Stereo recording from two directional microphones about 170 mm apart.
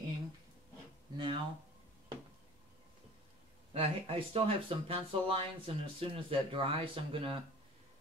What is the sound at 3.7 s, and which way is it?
Speech, 35° right (ahead or behind).